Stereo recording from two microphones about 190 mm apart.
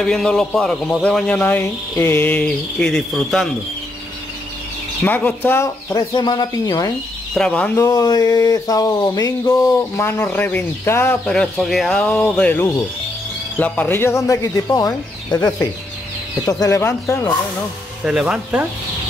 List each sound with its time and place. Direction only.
0.0 s speech: 5° left (ahead or behind)
5.0 s speech: 10° left (ahead or behind)
7.3 s speech: 5° left (ahead or behind)
18.0 s speech: 5° right (ahead or behind)